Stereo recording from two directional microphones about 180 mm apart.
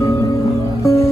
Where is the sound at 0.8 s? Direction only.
15° left (ahead or behind).